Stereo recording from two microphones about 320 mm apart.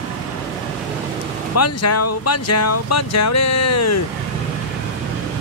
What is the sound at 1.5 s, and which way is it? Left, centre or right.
Speech, left.